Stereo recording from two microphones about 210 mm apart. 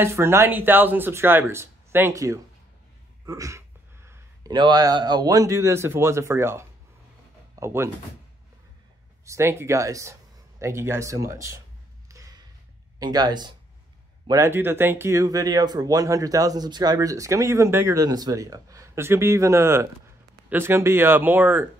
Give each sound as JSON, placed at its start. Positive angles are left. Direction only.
{"t": 0.0, "sound": "speech", "side_deg": -10}
{"t": 9.2, "sound": "speech", "side_deg": -15}
{"t": 12.1, "sound": "a sound", "side_deg": -15}
{"t": 13.0, "sound": "speech", "side_deg": -20}